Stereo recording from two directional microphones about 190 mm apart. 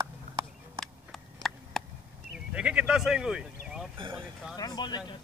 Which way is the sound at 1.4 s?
Centre (ahead or behind).